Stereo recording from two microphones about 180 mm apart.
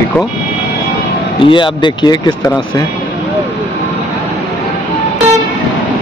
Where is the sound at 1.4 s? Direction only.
25° left (ahead or behind).